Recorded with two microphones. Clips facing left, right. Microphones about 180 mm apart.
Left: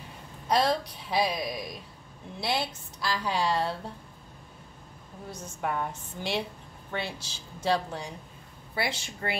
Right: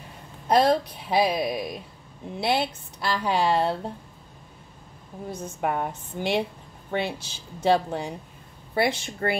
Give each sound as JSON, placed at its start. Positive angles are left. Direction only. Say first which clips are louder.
{"t": 0.5, "sound": "a woman's voice", "louder": "right 6 dB", "side_deg": -55}
{"t": 5.3, "sound": "a woman's voice", "louder": "right 5 dB", "side_deg": -55}